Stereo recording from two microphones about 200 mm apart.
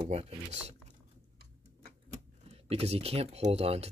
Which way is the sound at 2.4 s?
30° right (ahead or behind).